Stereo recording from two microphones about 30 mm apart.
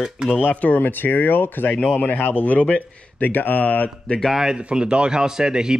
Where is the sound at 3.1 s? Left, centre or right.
Left.